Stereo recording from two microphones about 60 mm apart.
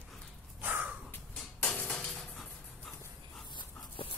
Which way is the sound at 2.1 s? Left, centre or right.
Centre.